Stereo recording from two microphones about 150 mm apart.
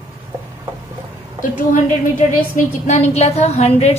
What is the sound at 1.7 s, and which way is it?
A woman's voice, 60° left (ahead or behind).